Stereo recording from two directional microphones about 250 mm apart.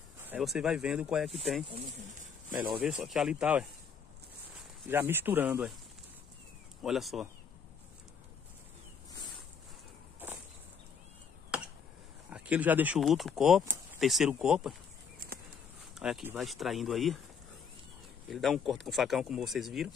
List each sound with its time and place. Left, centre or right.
0.2 s speech: centre
1.7 s speech: right
2.8 s speech: centre
4.8 s speech: centre
6.8 s speech: centre
11.5 s a sound: centre
12.3 s speech: centre
15.9 s speech: centre
18.3 s speech: centre